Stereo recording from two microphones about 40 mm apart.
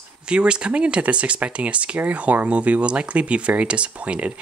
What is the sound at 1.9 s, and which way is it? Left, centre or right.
Speech, right.